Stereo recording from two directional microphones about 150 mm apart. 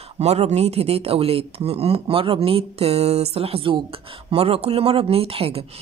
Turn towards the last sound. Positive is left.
turn(degrees=-40)  # may be behind; listen again after turning